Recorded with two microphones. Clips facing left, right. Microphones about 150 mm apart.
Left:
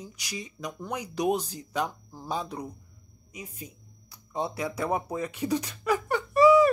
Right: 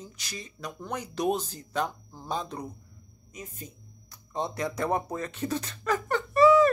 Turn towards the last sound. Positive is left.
turn(degrees=10)  # may be behind; listen again after turning